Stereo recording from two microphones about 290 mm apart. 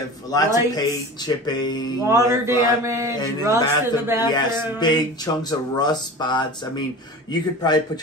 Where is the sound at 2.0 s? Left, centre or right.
Centre.